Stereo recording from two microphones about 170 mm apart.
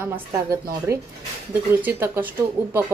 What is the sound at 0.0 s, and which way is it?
Speech, 15° right (ahead or behind).